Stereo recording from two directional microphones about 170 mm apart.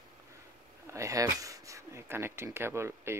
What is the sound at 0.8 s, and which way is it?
Speech, 15° right (ahead or behind).